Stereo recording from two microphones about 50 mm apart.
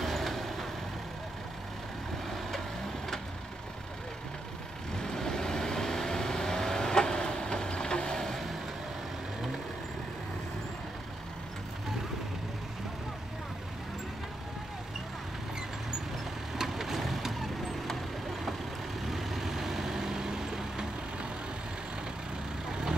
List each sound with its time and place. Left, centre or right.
0.0 s vehicle: centre
2.2 s vehicle: centre
4.9 s vehicle: centre
16.5 s boat: centre
19.0 s vehicle: centre
22.7 s vehicle: centre